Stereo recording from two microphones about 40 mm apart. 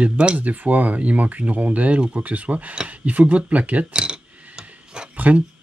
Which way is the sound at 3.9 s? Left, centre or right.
Right.